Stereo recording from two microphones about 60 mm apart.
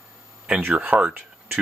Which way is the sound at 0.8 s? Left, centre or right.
Right.